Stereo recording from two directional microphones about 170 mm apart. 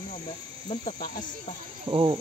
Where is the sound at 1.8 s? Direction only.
30° right (ahead or behind).